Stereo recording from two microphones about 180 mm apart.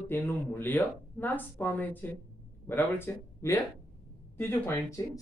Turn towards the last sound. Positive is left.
turn(degrees=15)  # may be behind; listen again after turning